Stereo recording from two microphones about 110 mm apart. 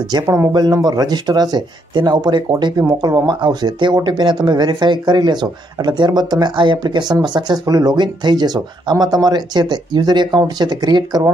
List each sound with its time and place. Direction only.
0.1 s speech: 35° right (ahead or behind)